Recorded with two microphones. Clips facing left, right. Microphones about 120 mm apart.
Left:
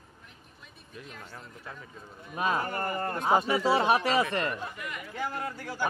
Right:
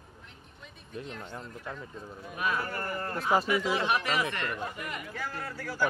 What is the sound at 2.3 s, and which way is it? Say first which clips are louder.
Speech: left 3 dB; 30° left (ahead or behind).